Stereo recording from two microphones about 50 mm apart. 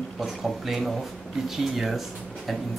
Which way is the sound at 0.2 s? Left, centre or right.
Centre.